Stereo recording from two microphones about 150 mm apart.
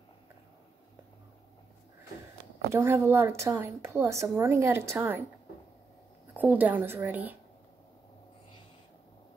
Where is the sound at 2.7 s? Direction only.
15° right (ahead or behind).